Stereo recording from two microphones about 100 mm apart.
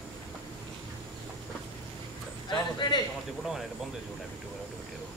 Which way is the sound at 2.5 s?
50° left (ahead or behind).